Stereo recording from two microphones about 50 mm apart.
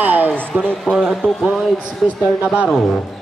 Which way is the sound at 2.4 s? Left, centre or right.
Right.